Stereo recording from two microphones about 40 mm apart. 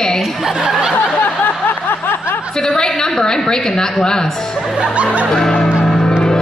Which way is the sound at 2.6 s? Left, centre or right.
Centre.